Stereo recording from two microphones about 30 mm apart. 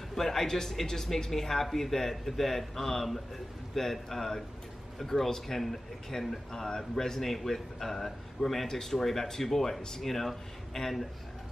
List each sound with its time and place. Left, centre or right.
0.1 s a man's voice: centre